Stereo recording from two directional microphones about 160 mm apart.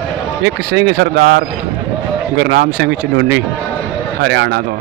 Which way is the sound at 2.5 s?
90° right.